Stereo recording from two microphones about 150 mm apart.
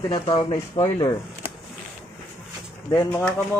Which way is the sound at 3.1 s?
15° left (ahead or behind).